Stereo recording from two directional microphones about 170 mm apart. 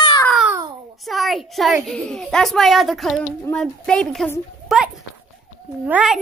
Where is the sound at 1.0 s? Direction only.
Centre (ahead or behind).